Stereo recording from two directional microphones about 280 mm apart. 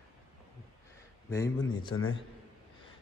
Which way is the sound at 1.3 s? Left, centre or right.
Centre.